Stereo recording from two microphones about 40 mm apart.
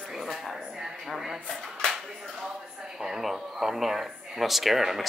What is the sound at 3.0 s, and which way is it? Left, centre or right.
Speech, centre.